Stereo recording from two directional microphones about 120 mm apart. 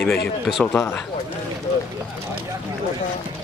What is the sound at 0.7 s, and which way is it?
Speech, 20° left (ahead or behind).